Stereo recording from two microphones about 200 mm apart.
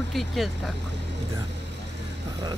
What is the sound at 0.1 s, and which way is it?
Speech, centre (ahead or behind).